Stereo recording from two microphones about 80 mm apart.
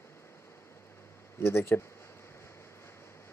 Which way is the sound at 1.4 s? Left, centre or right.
Left.